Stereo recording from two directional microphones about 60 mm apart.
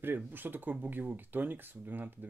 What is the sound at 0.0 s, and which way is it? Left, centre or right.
Speech, right.